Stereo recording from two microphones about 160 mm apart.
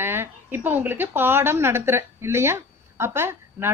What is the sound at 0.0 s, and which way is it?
A woman's voice, 15° right (ahead or behind).